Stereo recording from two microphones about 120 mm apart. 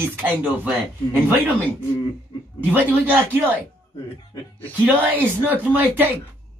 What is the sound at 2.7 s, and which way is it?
Speech, 15° right (ahead or behind).